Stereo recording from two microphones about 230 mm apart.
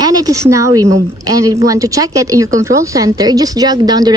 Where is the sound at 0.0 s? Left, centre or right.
Centre.